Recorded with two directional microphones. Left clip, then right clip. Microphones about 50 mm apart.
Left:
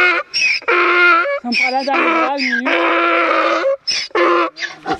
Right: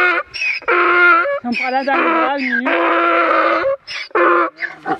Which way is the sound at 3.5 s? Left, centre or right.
Left.